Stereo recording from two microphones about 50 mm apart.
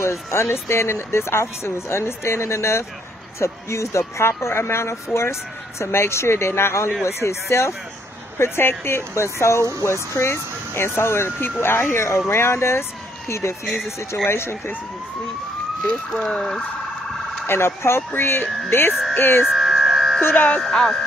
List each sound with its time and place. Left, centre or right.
0.0 s speech: left
4.2 s speech: left
8.4 s speech: left
12.3 s speech: left
14.2 s speech: left
16.1 s speech: centre
17.5 s speech: left
19.1 s a sound: left
19.5 s a sound: centre
20.3 s speech: left
20.6 s speech: centre